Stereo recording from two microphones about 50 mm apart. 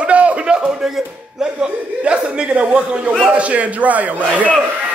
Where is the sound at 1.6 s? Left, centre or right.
Right.